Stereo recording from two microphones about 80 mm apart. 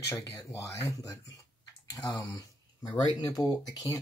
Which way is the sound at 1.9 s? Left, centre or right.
Left.